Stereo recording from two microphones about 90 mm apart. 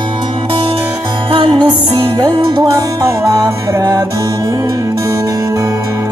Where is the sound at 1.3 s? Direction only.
65° right (ahead or behind).